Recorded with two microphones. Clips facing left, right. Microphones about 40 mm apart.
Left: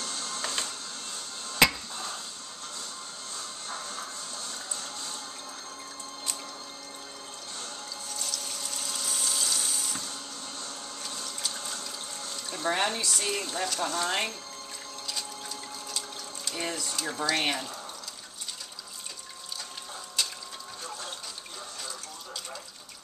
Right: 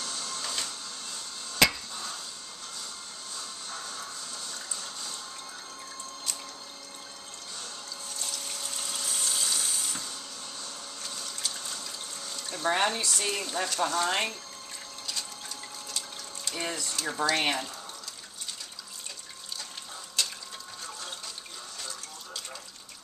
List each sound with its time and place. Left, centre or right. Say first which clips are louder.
0.2 s music: left 3 dB; left
1.6 s a sound: left 1 dB; centre
8.4 s dental drill: even; centre
11.1 s water: even; centre
12.6 s speech: right 1 dB; centre
16.4 s speech: even; centre
20.2 s boat: even; centre